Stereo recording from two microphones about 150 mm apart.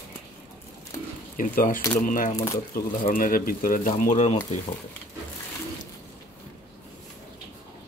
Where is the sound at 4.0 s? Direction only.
50° left (ahead or behind).